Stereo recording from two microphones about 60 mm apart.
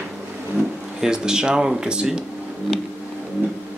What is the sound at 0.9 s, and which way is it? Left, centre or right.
Speech, centre.